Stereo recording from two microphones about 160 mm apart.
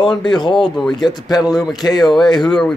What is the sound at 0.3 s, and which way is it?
Speech, 30° left (ahead or behind).